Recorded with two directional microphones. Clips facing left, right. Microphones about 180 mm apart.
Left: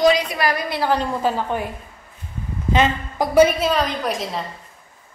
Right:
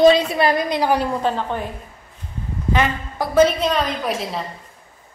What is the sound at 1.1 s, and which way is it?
Speech, 5° left (ahead or behind).